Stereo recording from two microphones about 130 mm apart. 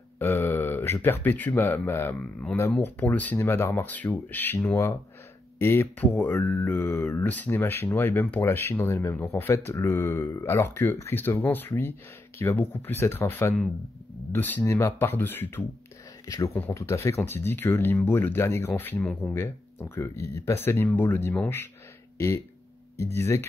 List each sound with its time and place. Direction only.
0.2 s speech: 15° left (ahead or behind)
5.6 s speech: 20° left (ahead or behind)
16.3 s speech: 25° left (ahead or behind)
23.1 s speech: 20° left (ahead or behind)